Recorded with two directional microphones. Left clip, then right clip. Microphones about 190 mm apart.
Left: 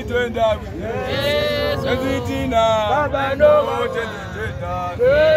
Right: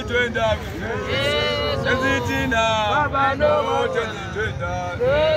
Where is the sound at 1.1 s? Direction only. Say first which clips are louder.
Left 2 dB; 5° right (ahead or behind).